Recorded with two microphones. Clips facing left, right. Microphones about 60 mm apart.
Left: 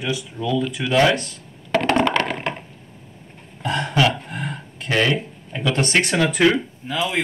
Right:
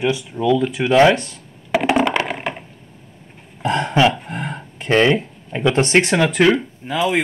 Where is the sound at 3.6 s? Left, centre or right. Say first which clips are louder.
Right 4 dB; right.